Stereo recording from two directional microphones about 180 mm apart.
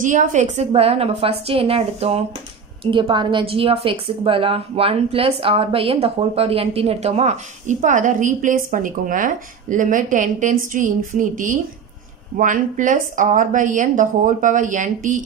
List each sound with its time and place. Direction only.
0.0 s a woman's voice: 45° right (ahead or behind)